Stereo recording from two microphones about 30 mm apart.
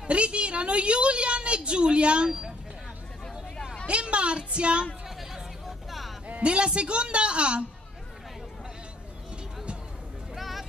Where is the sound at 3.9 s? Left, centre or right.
Right.